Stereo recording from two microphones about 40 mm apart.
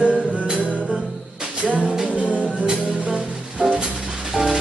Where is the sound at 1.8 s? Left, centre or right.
Centre.